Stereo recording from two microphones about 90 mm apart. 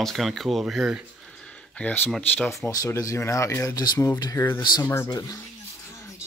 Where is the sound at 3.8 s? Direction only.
45° left (ahead or behind).